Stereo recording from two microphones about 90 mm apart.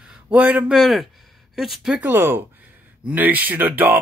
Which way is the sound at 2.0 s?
25° right (ahead or behind).